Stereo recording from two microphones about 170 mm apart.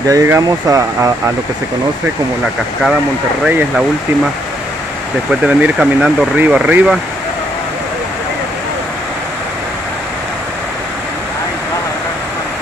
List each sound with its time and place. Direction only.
0.1 s speech: 20° right (ahead or behind)
3.4 s speech: 5° right (ahead or behind)
5.3 s speech: 5° right (ahead or behind)